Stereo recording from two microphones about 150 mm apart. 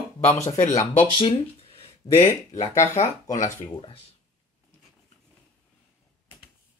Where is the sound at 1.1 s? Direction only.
35° left (ahead or behind).